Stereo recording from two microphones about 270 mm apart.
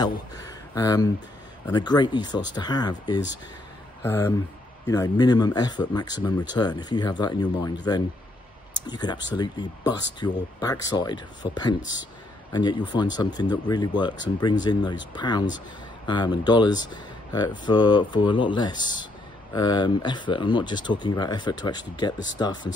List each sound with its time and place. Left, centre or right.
0.0 s speech: centre